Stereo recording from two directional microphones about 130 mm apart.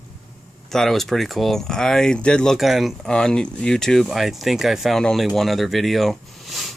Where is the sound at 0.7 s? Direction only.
Centre (ahead or behind).